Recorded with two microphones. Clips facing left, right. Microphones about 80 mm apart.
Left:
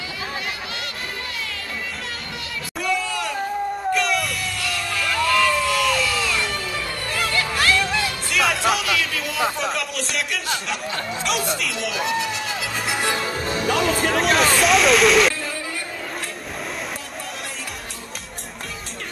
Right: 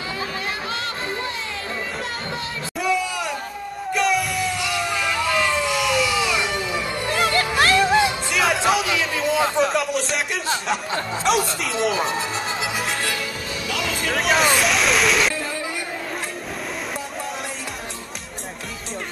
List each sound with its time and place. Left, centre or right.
3.9 s music: centre
4.6 s crowd: centre
7.6 s music: right
8.3 s music: centre
8.8 s a sound: right
9.6 s a sound: centre
11.8 s speech: right
12.9 s music: centre
13.2 s music: left
14.1 s speech: centre